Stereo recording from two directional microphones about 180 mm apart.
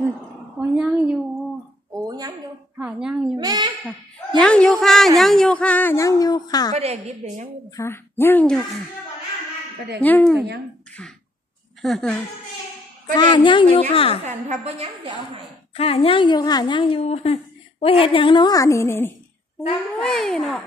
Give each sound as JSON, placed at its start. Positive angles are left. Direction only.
{"t": 0.6, "sound": "a woman's voice", "side_deg": -5}
{"t": 2.0, "sound": "a sound", "side_deg": -20}
{"t": 2.8, "sound": "speech", "side_deg": -5}
{"t": 3.3, "sound": "a woman's voice", "side_deg": -20}
{"t": 4.4, "sound": "speech", "side_deg": 5}
{"t": 6.7, "sound": "a woman's voice", "side_deg": -35}
{"t": 7.7, "sound": "speech", "side_deg": 15}
{"t": 10.0, "sound": "speech", "side_deg": 10}
{"t": 11.8, "sound": "speech", "side_deg": 0}
{"t": 13.1, "sound": "a woman's voice", "side_deg": 25}
{"t": 14.2, "sound": "a woman's voice", "side_deg": -40}
{"t": 14.8, "sound": "a woman's voice", "side_deg": -30}
{"t": 15.7, "sound": "a woman's voice", "side_deg": 35}
{"t": 20.0, "sound": "speech", "side_deg": 0}